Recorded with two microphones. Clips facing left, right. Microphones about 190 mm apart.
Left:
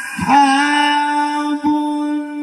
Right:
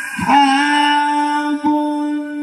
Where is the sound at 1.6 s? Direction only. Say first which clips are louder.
Even; 40° left (ahead or behind).